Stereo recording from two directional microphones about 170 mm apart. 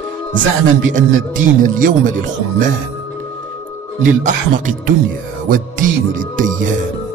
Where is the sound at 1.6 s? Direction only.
50° right (ahead or behind).